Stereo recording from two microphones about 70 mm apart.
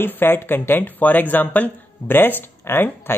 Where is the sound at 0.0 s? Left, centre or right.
Left.